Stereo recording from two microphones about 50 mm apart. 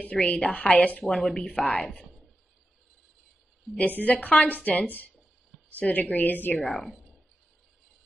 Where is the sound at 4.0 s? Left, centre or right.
Left.